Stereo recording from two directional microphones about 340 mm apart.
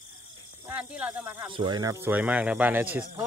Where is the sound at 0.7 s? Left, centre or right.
Centre.